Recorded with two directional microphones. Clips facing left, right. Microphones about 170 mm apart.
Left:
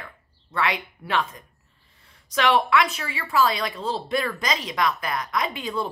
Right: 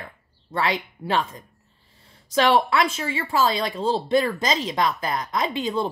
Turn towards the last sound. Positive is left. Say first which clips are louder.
# right 3 dB
turn(degrees=-25)  # may be behind; listen again after turning